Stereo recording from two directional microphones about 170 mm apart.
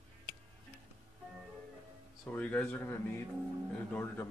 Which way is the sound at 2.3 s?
10° left (ahead or behind).